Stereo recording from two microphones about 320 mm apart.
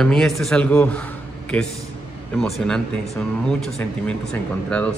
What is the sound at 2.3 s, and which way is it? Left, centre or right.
Speech, centre.